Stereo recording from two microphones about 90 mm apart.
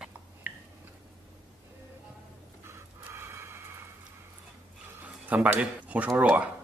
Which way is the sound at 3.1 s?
30° right (ahead or behind).